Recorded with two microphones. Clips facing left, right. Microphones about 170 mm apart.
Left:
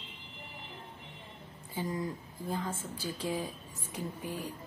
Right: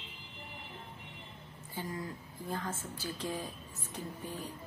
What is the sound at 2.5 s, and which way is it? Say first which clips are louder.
A woman's voice: left 2 dB; 10° left (ahead or behind).